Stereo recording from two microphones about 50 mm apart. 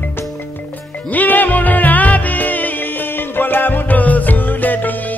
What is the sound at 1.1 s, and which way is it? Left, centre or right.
Music, left.